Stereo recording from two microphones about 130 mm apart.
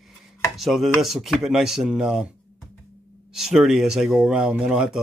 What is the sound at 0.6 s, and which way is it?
Speech, centre (ahead or behind).